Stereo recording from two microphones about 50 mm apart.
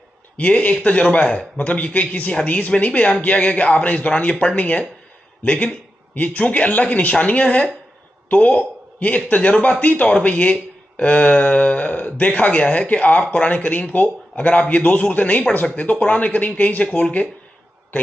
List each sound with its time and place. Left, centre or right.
0.4 s speech: left